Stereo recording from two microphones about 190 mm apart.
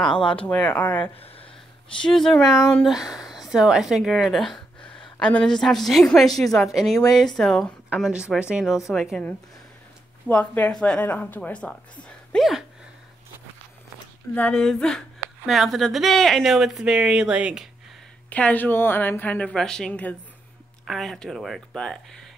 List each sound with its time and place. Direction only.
0.1 s speech: 25° left (ahead or behind)
0.5 s a woman's voice: 10° left (ahead or behind)
1.2 s a sound: 30° left (ahead or behind)
2.0 s a woman's voice: 5° left (ahead or behind)
14.3 s speech: 5° left (ahead or behind)
18.3 s a woman's voice: 5° left (ahead or behind)